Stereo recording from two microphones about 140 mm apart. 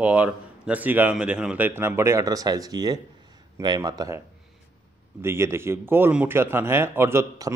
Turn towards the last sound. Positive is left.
turn(degrees=-20)  # may be behind; listen again after turning